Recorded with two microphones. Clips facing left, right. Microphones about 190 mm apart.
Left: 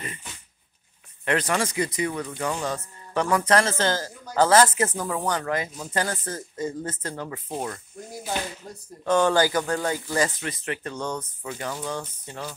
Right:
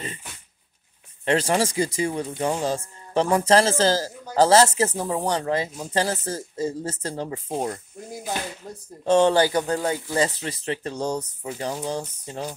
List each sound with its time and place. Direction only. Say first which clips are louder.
1.2 s speech: right 3 dB; 30° right (ahead or behind)
9.0 s speech: right 3 dB; 25° right (ahead or behind)